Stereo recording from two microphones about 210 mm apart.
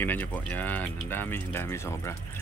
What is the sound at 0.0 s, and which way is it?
Speech, 10° left (ahead or behind).